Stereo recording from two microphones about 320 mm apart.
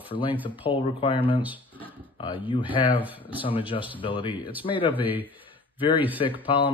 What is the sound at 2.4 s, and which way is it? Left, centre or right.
Speech, centre.